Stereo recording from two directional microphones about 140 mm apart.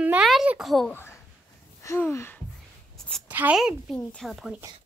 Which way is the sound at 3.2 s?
10° right (ahead or behind).